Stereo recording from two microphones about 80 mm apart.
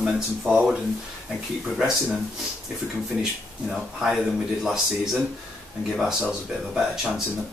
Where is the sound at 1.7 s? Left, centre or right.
Centre.